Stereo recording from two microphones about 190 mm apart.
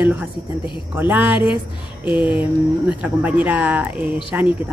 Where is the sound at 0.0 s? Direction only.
10° right (ahead or behind).